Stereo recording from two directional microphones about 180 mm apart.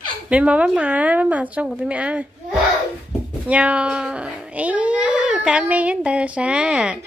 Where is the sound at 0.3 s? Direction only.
5° right (ahead or behind).